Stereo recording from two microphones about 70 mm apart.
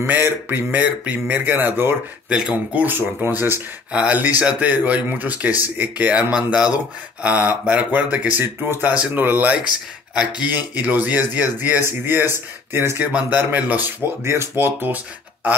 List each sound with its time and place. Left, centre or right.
0.0 s speech: right
2.2 s speech: centre
2.5 s speech: right
6.3 s speech: centre
9.1 s speech: right
10.1 s speech: centre
10.5 s speech: right
14.2 s speech: right